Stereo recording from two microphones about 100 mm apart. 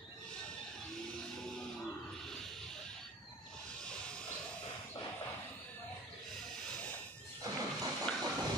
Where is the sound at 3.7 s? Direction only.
10° left (ahead or behind).